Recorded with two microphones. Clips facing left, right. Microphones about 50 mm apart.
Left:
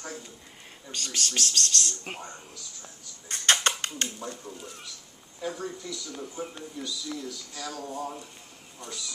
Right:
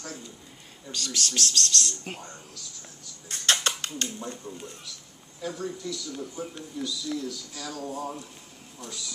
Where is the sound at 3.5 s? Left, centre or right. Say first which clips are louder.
Left 2 dB; left.